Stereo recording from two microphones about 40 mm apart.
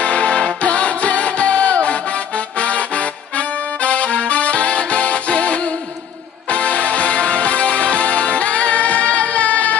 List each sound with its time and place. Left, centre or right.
0.0 s music: left